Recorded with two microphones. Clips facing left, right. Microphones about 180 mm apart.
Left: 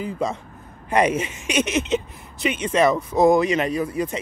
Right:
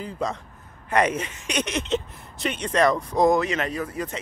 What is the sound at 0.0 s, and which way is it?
Speech, 10° left (ahead or behind).